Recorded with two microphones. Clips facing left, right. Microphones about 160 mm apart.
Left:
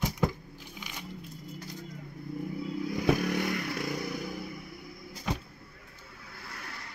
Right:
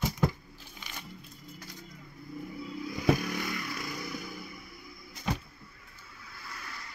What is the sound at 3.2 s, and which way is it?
Motorcycle, 60° left (ahead or behind).